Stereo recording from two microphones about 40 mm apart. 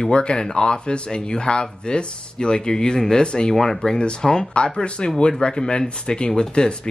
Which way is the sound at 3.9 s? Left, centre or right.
Left.